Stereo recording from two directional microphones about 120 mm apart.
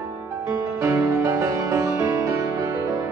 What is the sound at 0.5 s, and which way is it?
Music, 20° right (ahead or behind).